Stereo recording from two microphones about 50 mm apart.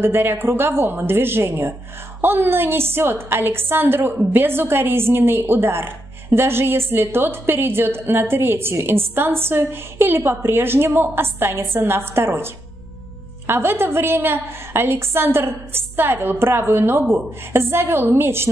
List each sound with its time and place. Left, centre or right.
0.0 s a woman's voice: right
13.5 s a woman's voice: right